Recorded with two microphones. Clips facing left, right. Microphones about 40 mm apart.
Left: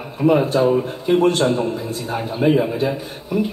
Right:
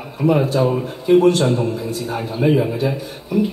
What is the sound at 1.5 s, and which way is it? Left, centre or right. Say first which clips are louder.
Speech: right 1 dB; left.